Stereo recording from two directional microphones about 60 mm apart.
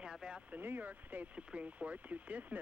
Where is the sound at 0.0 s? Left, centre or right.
Centre.